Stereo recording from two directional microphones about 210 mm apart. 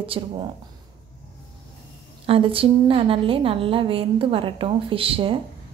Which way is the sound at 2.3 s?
25° right (ahead or behind).